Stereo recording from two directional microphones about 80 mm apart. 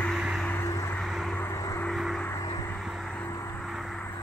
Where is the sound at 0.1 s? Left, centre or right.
Centre.